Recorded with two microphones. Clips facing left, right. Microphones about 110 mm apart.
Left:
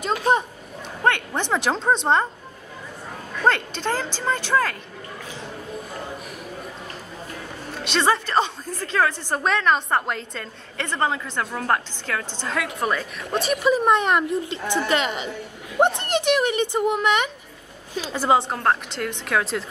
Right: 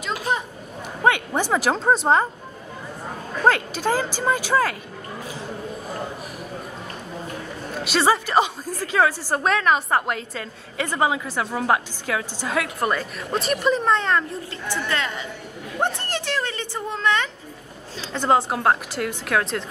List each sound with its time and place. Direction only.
1.0 s a woman's voice: 10° right (ahead or behind)
3.4 s speech: 5° right (ahead or behind)
7.8 s a woman's voice: 5° right (ahead or behind)
18.5 s a woman's voice: 5° right (ahead or behind)